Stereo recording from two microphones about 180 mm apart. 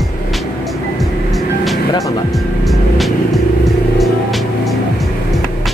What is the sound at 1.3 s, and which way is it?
Music, centre (ahead or behind).